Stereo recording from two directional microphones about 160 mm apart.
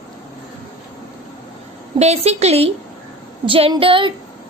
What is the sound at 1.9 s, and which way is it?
A woman's voice, 40° right (ahead or behind).